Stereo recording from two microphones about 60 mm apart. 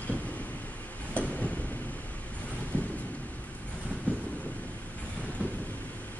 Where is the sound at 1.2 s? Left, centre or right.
Left.